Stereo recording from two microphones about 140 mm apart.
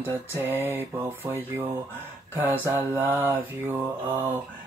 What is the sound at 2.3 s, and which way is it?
Mantra, 15° right (ahead or behind).